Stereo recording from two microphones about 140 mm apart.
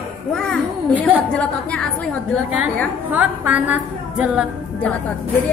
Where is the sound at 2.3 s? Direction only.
5° right (ahead or behind).